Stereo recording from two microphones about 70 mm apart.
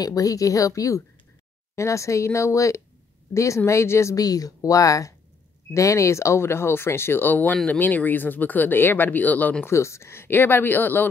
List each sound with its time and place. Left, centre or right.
0.0 s a woman's voice: left
4.2 s a woman's voice: left
9.7 s speech: left